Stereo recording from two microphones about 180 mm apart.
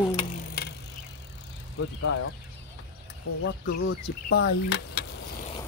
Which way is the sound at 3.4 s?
70° left (ahead or behind).